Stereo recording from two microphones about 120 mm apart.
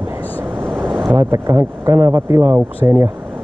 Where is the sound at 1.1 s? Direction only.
25° right (ahead or behind).